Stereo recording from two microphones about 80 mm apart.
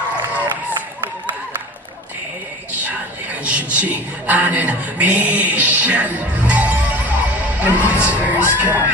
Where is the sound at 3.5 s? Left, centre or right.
Centre.